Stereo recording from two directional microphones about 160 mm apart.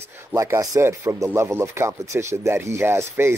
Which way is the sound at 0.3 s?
20° right (ahead or behind).